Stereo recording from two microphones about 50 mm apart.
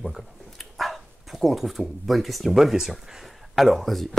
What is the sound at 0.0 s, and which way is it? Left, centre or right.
Speech, centre.